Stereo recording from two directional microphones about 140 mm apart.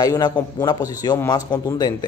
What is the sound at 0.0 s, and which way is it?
Speech, 25° left (ahead or behind).